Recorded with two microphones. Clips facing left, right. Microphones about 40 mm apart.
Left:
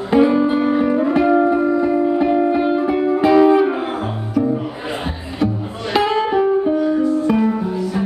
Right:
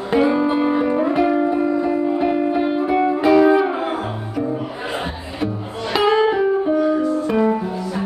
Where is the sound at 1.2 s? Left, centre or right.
Centre.